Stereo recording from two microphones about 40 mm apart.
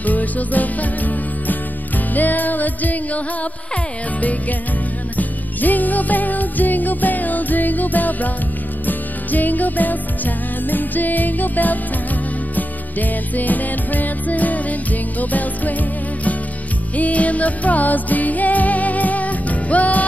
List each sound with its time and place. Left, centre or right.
0.0 s music: left
4.2 s music: left
16.9 s music: left